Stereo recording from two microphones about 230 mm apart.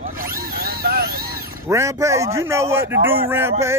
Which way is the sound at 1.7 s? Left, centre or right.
Centre.